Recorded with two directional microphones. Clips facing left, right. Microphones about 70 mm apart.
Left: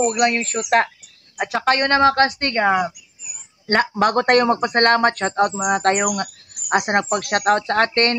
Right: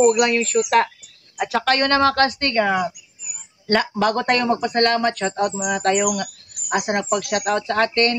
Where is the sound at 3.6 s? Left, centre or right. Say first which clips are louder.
Left 1 dB; left.